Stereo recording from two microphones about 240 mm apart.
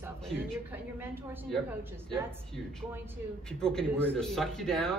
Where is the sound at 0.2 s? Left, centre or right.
Centre.